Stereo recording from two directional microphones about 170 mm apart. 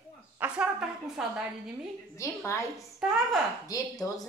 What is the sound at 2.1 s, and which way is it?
Speech, 15° left (ahead or behind).